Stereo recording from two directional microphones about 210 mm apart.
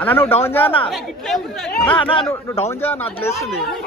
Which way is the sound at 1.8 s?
25° left (ahead or behind).